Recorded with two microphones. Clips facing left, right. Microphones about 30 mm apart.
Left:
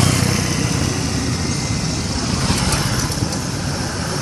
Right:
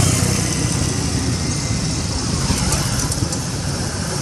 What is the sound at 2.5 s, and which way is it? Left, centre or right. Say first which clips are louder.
Vehicle: left 2 dB; left.